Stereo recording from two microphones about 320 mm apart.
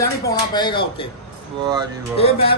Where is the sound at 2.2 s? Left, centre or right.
Centre.